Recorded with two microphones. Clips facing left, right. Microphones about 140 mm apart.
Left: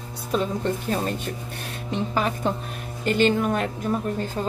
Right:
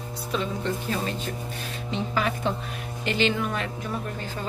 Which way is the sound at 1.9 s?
40° left (ahead or behind).